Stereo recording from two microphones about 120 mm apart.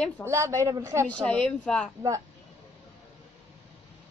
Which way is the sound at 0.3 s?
25° right (ahead or behind).